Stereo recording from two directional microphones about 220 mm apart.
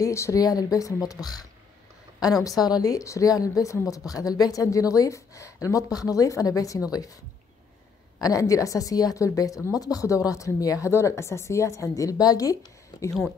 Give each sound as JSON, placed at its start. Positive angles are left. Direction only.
{"t": 0.0, "sound": "a woman's voice", "side_deg": 15}
{"t": 2.6, "sound": "a woman's voice", "side_deg": 15}
{"t": 8.2, "sound": "a woman's voice", "side_deg": 15}